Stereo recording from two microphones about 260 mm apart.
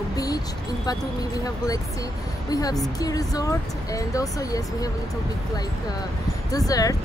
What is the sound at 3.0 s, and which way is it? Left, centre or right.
Speech, centre.